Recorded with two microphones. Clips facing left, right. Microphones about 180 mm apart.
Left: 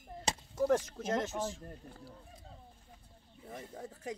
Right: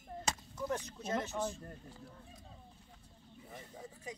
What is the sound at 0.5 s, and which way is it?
Speech, 80° left.